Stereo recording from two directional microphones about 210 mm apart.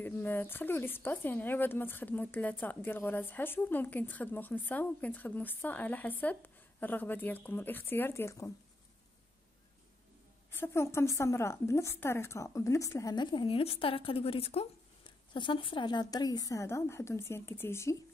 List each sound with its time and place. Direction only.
0.0 s a woman's voice: 10° left (ahead or behind)
10.5 s a woman's voice: 10° left (ahead or behind)